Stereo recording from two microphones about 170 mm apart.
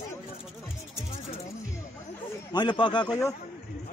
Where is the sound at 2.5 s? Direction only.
25° left (ahead or behind).